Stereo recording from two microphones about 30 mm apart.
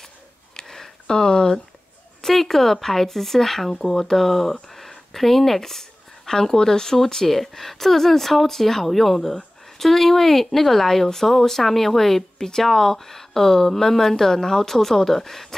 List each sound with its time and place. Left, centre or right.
0.6 s a sound: centre
1.1 s speech: left
2.2 s speech: centre